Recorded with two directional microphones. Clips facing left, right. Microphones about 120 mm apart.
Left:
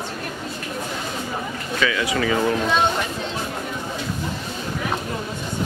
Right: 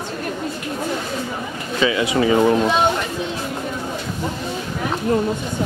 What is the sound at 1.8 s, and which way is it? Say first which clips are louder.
Speech: right 5 dB; 25° right (ahead or behind).